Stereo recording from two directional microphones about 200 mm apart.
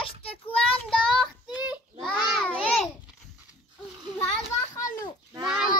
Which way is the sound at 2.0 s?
Centre (ahead or behind).